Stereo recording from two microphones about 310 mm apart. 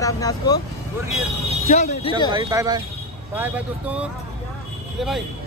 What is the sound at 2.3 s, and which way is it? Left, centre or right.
Speech, centre.